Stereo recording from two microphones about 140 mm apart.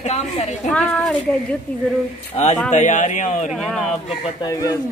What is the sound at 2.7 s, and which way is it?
Speech, 60° left (ahead or behind).